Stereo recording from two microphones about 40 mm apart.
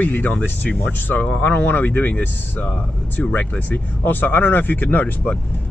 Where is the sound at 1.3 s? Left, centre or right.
Left.